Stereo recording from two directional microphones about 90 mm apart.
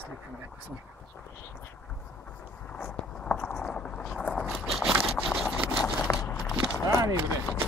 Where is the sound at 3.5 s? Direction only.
10° left (ahead or behind).